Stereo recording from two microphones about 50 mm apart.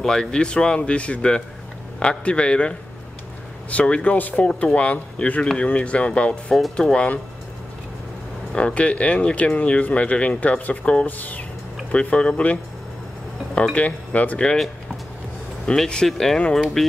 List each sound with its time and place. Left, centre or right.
0.0 s speech: centre
3.7 s speech: left
6.5 s speech: centre
8.5 s speech: left
11.1 s speech: left
11.9 s speech: left
13.7 s speech: left
15.6 s speech: centre